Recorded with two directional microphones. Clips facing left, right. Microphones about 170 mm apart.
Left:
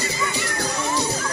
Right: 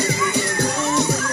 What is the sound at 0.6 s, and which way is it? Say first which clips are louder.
Music: right 3 dB; 60° right (ahead or behind).